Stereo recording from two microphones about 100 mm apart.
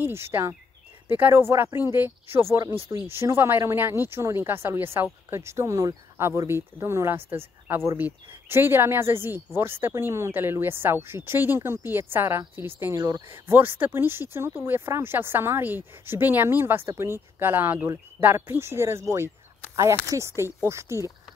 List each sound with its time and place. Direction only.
0.0 s speech: 25° right (ahead or behind)
12.9 s speech: 35° right (ahead or behind)
13.3 s speech: 20° right (ahead or behind)